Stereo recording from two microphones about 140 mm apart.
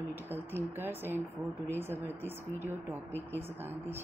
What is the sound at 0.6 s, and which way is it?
A woman's voice, 15° right (ahead or behind).